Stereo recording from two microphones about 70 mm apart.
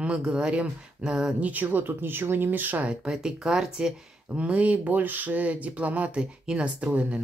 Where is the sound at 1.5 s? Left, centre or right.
Right.